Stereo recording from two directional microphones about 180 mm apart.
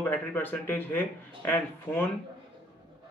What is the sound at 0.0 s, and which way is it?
Speech, 10° left (ahead or behind).